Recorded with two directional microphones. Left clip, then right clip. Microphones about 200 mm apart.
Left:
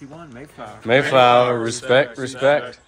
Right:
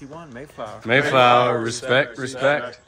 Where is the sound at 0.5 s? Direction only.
10° right (ahead or behind).